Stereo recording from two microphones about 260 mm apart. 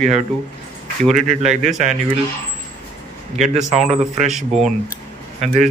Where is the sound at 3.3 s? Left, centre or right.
Centre.